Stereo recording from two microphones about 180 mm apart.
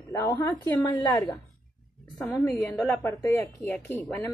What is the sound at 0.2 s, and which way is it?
A woman's voice, 20° left (ahead or behind).